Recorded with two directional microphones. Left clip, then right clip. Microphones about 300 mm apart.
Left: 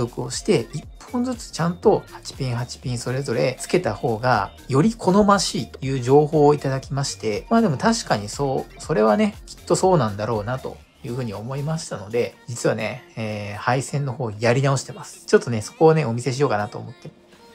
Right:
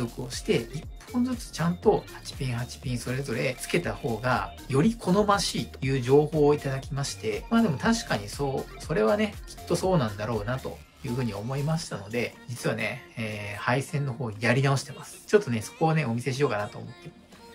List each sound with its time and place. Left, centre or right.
0.0 s speech: centre